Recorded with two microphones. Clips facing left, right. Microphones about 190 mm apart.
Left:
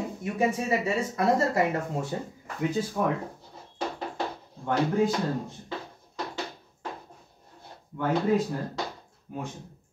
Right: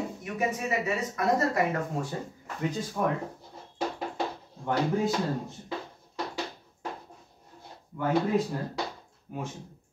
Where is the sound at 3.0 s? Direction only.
5° left (ahead or behind).